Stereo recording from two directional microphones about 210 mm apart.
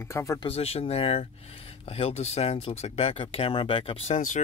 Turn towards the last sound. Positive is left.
turn(degrees=25)  # may be behind; listen again after turning